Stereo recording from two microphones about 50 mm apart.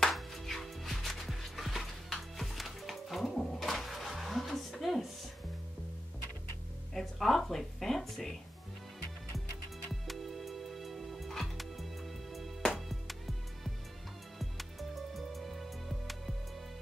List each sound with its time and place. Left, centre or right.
0.0 s music: centre
3.4 s a sound: centre
6.9 s music: centre
10.0 s music: centre
14.4 s music: centre